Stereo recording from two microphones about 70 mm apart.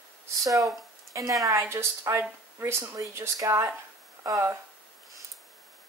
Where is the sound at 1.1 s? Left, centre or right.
Right.